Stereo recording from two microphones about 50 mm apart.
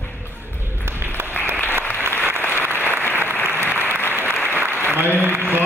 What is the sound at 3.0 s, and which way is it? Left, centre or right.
Applause, left.